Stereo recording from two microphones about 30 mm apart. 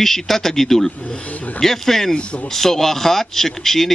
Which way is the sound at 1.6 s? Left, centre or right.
Centre.